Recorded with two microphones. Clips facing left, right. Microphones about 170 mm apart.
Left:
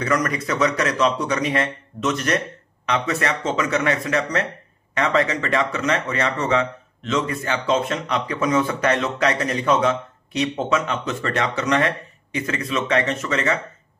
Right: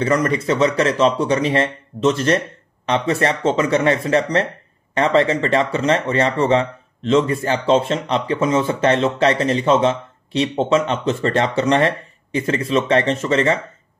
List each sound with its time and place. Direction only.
0.0 s speech: 30° right (ahead or behind)